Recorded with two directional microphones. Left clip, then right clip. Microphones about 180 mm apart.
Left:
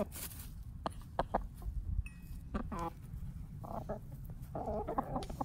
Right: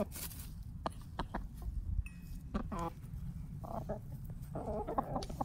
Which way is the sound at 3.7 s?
5° right (ahead or behind).